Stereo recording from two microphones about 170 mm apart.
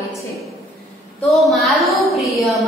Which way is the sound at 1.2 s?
Centre (ahead or behind).